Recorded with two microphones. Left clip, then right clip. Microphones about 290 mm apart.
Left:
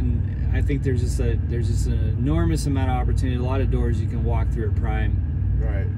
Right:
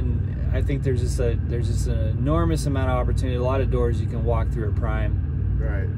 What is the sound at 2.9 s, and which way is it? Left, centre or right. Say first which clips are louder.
Speech: right 2 dB; centre.